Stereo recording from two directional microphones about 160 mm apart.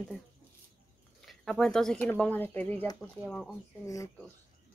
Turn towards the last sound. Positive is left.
turn(degrees=20)  # may be behind; listen again after turning